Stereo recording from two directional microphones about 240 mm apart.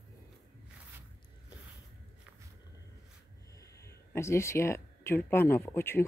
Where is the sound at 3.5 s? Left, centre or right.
Centre.